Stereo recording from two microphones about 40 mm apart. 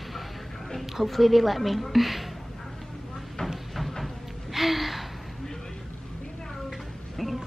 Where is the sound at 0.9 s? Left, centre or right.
Centre.